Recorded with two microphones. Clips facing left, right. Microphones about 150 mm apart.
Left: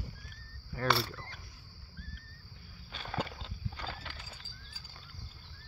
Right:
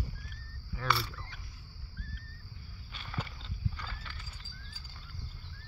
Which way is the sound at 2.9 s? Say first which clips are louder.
Left 5 dB; 90° left.